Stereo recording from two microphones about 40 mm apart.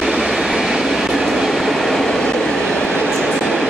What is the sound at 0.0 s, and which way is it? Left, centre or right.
Train, centre.